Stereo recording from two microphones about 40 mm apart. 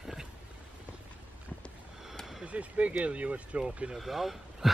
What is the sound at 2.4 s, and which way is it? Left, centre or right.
Speech, right.